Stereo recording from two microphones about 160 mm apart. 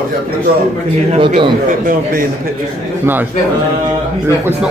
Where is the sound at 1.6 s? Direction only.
60° right (ahead or behind).